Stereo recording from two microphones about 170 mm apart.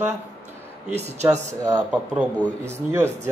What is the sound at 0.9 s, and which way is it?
Speech, 40° right (ahead or behind).